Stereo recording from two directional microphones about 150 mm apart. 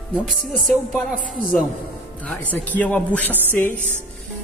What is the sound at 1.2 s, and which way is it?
Speech, 60° left (ahead or behind).